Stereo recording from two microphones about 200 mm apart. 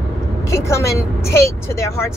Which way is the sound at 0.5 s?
15° left (ahead or behind).